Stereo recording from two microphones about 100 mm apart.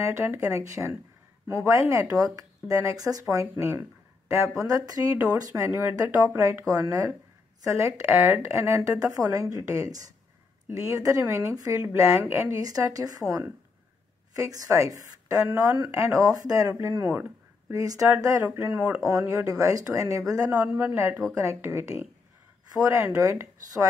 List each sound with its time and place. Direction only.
0.0 s speech: 30° right (ahead or behind)
4.5 s speech: 35° right (ahead or behind)
17.6 s speech: 35° right (ahead or behind)
18.4 s speech: 20° right (ahead or behind)
19.0 s speech: 35° right (ahead or behind)
20.6 s speech: 20° right (ahead or behind)